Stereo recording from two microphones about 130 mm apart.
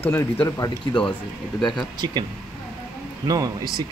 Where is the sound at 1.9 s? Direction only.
35° right (ahead or behind).